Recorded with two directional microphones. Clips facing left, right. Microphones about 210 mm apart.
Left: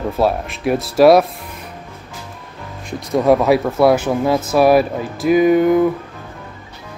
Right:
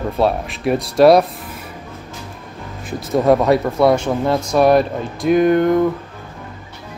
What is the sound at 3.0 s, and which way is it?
Speech, centre (ahead or behind).